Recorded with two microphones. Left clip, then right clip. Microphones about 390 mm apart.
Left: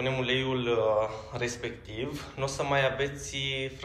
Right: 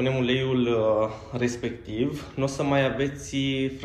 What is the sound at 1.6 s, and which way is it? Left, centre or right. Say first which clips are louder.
Speech: right 7 dB; left.